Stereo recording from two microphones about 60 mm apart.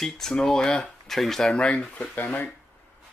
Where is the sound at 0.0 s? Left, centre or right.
Centre.